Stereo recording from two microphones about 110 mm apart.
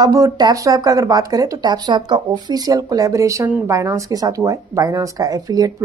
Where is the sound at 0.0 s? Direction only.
35° right (ahead or behind).